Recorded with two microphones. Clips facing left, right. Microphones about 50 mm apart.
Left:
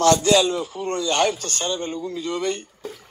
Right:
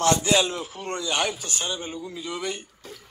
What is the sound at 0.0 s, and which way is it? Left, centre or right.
Speech, right.